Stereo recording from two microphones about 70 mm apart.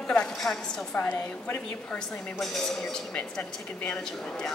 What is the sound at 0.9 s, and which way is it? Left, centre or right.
A woman's voice, left.